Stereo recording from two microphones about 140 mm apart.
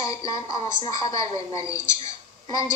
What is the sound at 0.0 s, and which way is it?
Music, 25° left (ahead or behind).